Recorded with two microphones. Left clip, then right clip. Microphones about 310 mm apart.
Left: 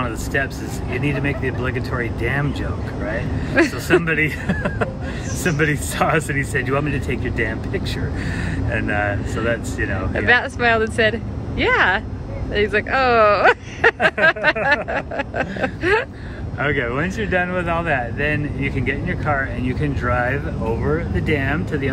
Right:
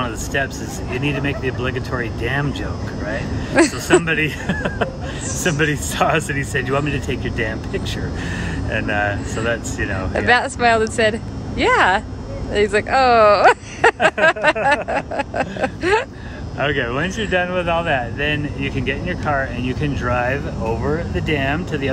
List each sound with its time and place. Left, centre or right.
0.0 s speech: centre